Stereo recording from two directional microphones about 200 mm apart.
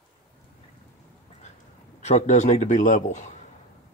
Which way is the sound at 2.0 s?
35° left (ahead or behind).